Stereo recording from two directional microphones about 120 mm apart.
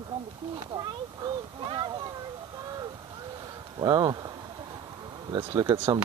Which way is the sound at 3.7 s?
35° right (ahead or behind).